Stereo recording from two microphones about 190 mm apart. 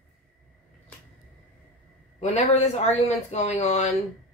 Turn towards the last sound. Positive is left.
turn(degrees=35)  # may be behind; listen again after turning